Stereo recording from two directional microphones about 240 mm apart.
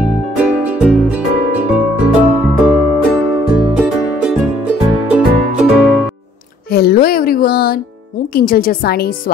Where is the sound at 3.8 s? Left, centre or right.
Centre.